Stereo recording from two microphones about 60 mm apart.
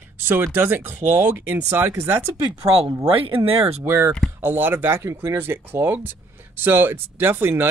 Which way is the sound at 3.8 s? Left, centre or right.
Right.